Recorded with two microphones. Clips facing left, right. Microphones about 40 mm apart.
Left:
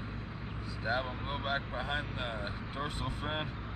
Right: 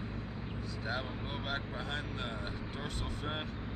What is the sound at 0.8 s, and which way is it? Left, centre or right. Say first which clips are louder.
Speech: left 5 dB; centre.